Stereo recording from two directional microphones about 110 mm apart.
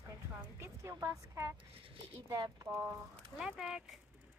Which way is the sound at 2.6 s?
20° right (ahead or behind).